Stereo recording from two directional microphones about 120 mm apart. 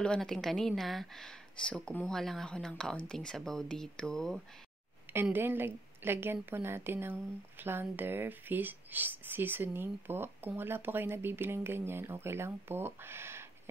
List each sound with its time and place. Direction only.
0.0 s a woman's voice: 5° left (ahead or behind)
5.1 s a woman's voice: 20° right (ahead or behind)